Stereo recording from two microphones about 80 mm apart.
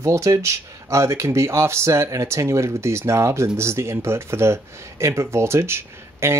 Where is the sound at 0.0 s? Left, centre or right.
Right.